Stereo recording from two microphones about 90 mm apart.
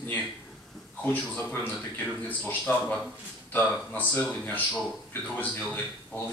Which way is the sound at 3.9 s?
20° left (ahead or behind).